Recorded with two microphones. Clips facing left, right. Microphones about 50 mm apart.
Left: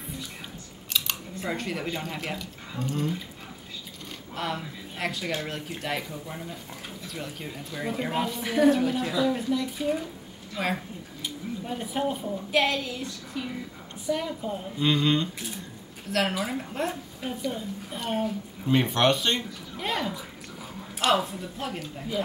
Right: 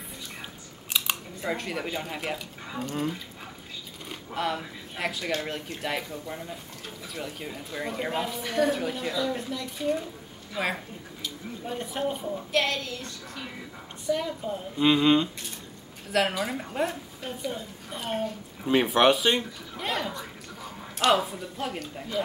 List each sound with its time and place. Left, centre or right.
0.9 s speech: centre
4.3 s speech: centre
14.8 s speech: centre
16.1 s speech: centre
18.6 s speech: centre